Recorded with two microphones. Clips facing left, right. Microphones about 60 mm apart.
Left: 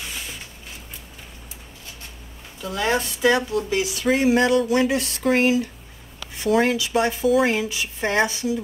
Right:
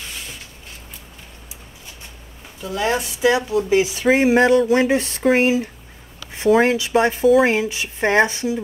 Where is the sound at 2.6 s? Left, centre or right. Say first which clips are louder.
Right 1 dB; centre; by 5.6 s right.